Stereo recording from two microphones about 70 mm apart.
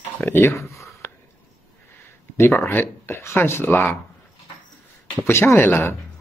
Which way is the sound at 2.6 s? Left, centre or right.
Left.